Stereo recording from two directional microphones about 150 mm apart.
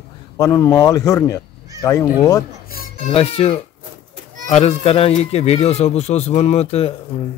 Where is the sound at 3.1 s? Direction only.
40° left (ahead or behind).